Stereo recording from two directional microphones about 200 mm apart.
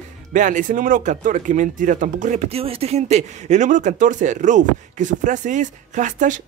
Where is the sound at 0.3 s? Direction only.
40° right (ahead or behind).